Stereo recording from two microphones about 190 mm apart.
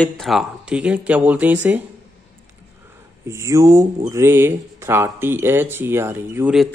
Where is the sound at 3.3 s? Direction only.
15° right (ahead or behind).